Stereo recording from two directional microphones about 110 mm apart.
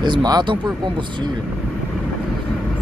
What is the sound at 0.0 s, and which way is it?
Speech, 40° right (ahead or behind).